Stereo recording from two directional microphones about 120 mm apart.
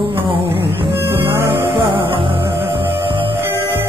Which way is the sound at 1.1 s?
45° right (ahead or behind).